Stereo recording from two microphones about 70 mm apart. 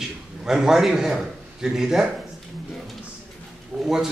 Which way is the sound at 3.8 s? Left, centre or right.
Centre.